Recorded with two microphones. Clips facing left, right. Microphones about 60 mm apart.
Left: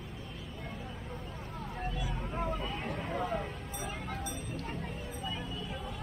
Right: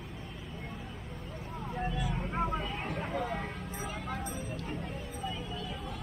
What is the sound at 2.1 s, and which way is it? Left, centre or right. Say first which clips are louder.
Vehicle: right 2 dB; right.